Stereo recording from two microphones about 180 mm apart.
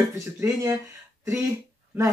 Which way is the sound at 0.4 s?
15° right (ahead or behind).